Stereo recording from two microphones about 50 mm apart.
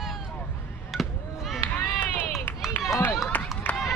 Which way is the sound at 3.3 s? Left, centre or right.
Left.